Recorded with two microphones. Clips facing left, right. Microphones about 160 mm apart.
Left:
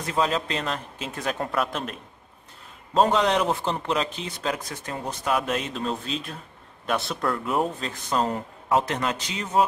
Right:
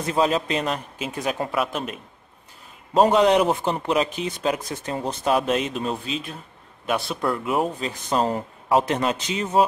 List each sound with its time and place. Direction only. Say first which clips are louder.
0.0 s speech: right 4 dB; 20° right (ahead or behind)
2.9 s speech: right 4 dB; 15° right (ahead or behind)
6.0 s speech: right 2 dB; 5° right (ahead or behind)
8.1 s speech: right 2 dB; 25° right (ahead or behind)